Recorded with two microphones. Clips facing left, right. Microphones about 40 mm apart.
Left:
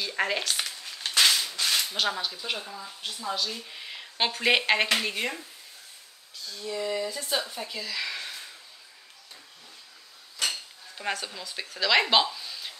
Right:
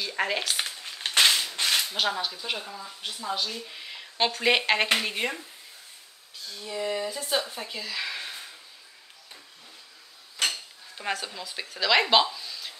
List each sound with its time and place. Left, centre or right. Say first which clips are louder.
0.0 s speech: even; centre
0.7 s a sound: right 1 dB; right
1.8 s speech: right 1 dB; centre
10.5 s speech: even; centre